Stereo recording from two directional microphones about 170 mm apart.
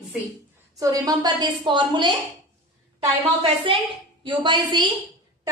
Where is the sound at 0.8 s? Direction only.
20° right (ahead or behind).